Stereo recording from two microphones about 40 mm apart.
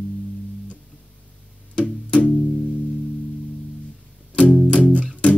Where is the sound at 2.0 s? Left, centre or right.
Left.